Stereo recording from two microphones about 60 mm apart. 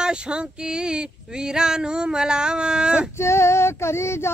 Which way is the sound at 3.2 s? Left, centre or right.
Left.